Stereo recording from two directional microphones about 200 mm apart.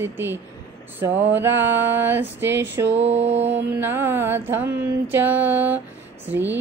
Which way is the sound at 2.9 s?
30° right (ahead or behind).